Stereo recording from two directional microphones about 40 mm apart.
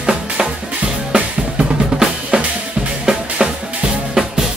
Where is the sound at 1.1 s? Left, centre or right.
Right.